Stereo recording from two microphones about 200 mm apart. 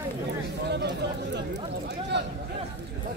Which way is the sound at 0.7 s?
60° right (ahead or behind).